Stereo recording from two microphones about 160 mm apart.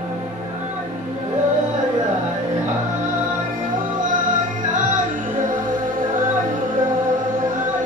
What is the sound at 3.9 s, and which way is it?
Music, 55° right (ahead or behind).